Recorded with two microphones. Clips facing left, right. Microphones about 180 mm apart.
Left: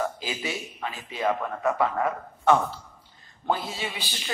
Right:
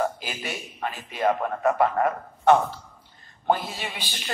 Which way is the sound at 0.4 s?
50° right (ahead or behind).